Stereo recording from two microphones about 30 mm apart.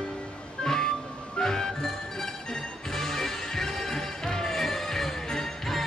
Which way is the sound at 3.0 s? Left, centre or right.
Centre.